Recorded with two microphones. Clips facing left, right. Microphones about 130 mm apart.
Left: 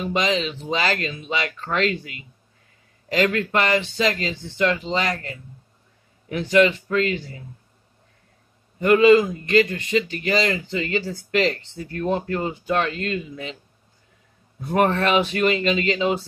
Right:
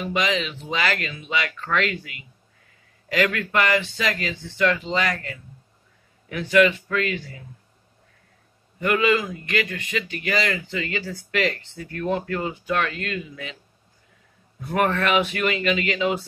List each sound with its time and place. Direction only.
0.0 s speech: 30° left (ahead or behind)
8.7 s speech: 30° left (ahead or behind)
14.7 s speech: 30° left (ahead or behind)